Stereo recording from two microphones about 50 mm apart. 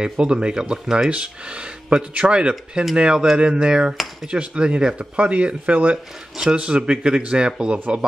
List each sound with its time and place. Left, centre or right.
0.0 s speech: centre
3.9 s dishes: centre
4.3 s speech: right